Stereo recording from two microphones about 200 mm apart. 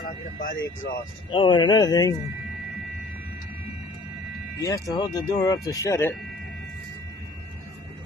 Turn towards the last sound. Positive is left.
turn(degrees=15)  # may be behind; listen again after turning